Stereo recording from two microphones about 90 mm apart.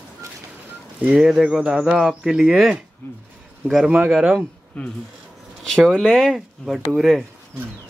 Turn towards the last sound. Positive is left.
turn(degrees=0)  # may be behind; listen again after turning